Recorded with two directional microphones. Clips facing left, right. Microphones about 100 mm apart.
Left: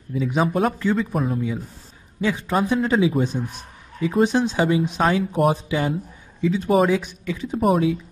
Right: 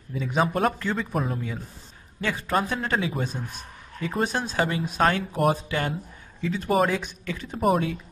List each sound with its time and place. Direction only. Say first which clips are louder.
0.1 s a man's voice: left 3 dB; 5° left (ahead or behind)
4.2 s a man's voice: left 6 dB; 15° left (ahead or behind)
6.7 s a man's voice: left 4 dB; centre (ahead or behind)